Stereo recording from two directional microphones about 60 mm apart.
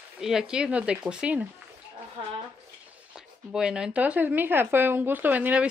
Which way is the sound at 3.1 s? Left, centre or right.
Centre.